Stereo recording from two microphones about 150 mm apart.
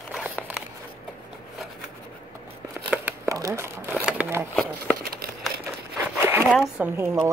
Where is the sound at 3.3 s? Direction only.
20° right (ahead or behind).